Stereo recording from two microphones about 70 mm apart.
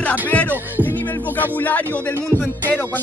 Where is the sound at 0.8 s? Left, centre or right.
Left.